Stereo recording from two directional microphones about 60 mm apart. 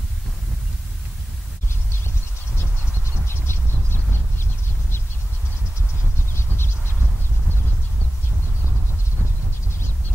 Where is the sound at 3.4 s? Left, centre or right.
Left.